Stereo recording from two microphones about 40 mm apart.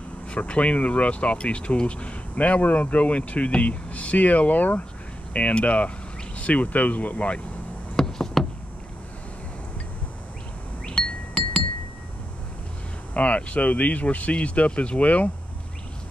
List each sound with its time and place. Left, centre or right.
0.3 s speech: left
5.3 s speech: left
7.9 s a sound: centre
13.1 s speech: left